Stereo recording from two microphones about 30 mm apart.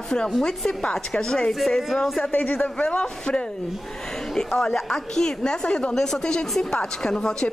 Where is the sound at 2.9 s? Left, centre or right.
Left.